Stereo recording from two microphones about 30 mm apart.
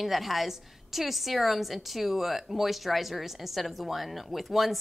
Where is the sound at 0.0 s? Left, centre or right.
Centre.